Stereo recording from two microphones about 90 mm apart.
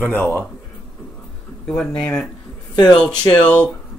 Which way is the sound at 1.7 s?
10° left (ahead or behind).